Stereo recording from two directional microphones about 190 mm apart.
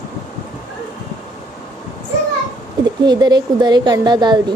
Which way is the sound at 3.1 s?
20° right (ahead or behind).